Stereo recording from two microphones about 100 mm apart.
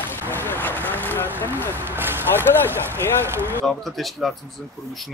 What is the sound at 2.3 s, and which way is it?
Speech, 20° left (ahead or behind).